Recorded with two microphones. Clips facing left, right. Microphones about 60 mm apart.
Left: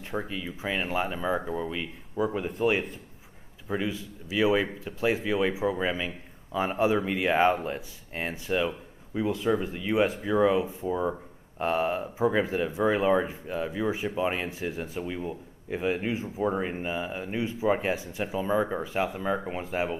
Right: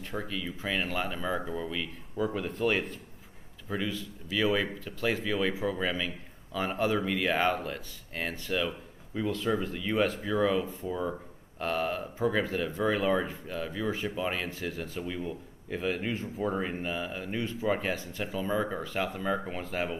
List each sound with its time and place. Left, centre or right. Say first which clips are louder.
0.0 s speech: left 2 dB; left
9.1 s speech: left 3 dB; centre